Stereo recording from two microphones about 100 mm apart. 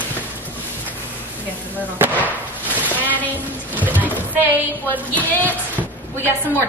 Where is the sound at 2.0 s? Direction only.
20° right (ahead or behind).